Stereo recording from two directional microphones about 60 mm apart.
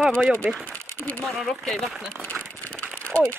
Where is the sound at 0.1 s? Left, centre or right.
Centre.